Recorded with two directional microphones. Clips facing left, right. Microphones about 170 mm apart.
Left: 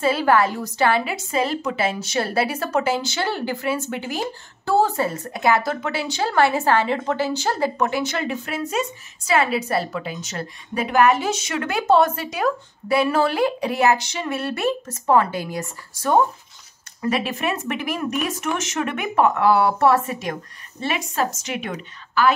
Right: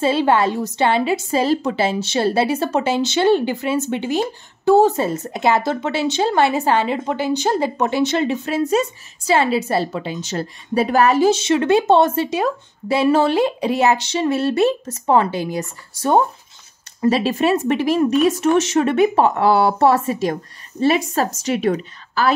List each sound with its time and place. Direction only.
0.0 s a woman's voice: 25° right (ahead or behind)